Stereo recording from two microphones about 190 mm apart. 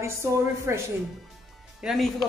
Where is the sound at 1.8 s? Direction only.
Centre (ahead or behind).